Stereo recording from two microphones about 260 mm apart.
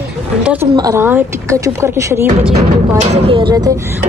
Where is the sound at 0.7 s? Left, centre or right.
Centre.